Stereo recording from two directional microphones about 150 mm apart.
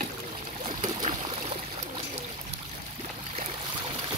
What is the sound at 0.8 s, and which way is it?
Boat, 30° right (ahead or behind).